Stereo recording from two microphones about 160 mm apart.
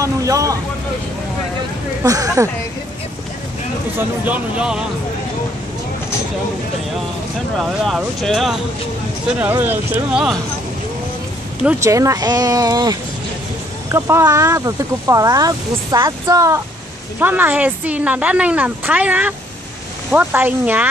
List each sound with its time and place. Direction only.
0.0 s vehicle: 20° right (ahead or behind)
2.0 s speech: 20° right (ahead or behind)
4.2 s speech: 10° right (ahead or behind)
7.5 s speech: centre (ahead or behind)
9.4 s speech: 10° right (ahead or behind)
11.8 s speech: 20° right (ahead or behind)
13.9 s speech: 15° right (ahead or behind)